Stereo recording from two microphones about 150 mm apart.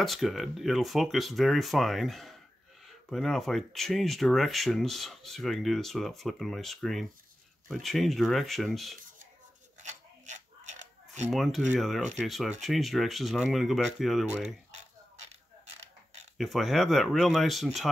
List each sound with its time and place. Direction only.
0.0 s speech: centre (ahead or behind)
9.8 s scissors: 50° right (ahead or behind)
11.3 s speech: centre (ahead or behind)
16.3 s speech: centre (ahead or behind)